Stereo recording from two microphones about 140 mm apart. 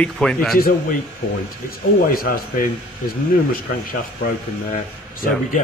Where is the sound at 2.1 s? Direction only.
90° left.